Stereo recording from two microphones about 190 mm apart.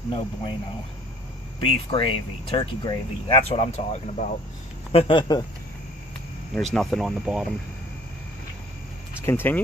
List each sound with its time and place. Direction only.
0.1 s speech: 25° left (ahead or behind)
1.6 s speech: 25° left (ahead or behind)
6.7 s speech: centre (ahead or behind)
9.2 s speech: 10° left (ahead or behind)